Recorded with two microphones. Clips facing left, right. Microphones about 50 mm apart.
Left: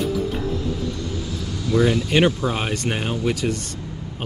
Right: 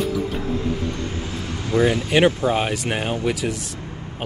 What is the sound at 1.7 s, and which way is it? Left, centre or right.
Speech, right.